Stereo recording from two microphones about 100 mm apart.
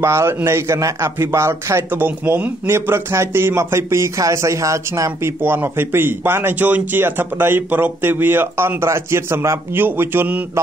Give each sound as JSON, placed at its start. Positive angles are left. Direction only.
{"t": 0.0, "sound": "a man's voice", "side_deg": -25}
{"t": 5.4, "sound": "a man's voice", "side_deg": -20}